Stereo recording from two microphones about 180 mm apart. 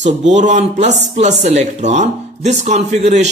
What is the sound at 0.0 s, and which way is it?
A man's voice, 40° right (ahead or behind).